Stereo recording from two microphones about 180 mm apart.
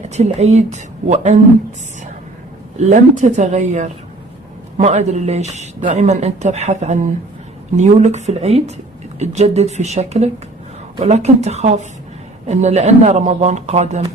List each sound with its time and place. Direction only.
0.1 s speech: 40° right (ahead or behind)
2.8 s speech: 40° right (ahead or behind)